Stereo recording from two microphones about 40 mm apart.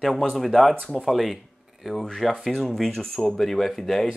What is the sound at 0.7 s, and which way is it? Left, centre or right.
Speech, centre.